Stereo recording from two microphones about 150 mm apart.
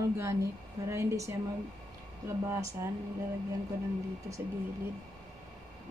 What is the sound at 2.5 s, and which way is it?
Speech, 20° right (ahead or behind).